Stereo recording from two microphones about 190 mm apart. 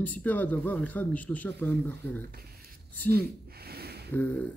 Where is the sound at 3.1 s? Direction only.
55° right (ahead or behind).